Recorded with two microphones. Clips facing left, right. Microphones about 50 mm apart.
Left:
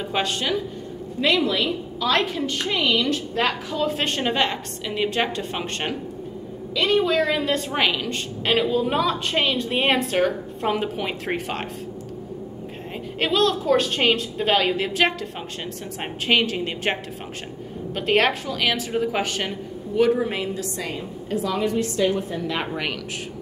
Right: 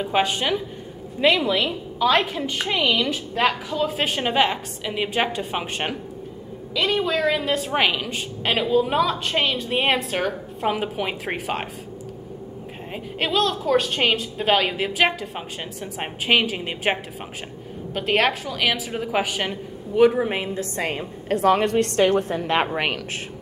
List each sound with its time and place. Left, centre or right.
0.0 s a woman's voice: centre
13.2 s a woman's voice: centre
20.5 s a woman's voice: right
22.7 s speech: right